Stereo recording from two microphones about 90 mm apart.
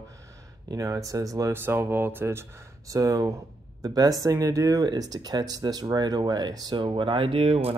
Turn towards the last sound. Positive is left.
turn(degrees=-90)